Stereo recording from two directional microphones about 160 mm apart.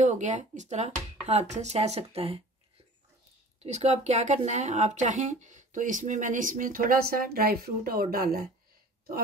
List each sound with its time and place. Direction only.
0.0 s speech: 50° right (ahead or behind)
3.6 s speech: 45° right (ahead or behind); by 8.5 s 70° right (ahead or behind)